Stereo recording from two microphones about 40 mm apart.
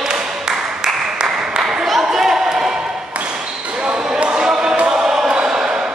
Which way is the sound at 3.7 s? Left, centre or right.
Right.